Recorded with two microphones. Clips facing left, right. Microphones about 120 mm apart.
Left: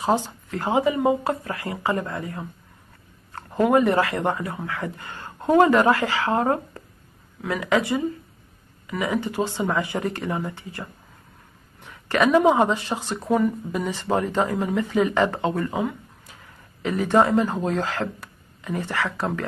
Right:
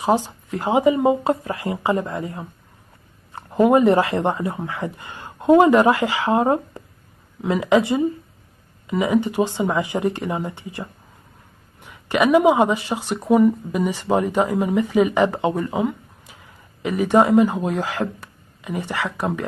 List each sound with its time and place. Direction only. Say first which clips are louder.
0.0 s speech: right 3 dB; 15° right (ahead or behind)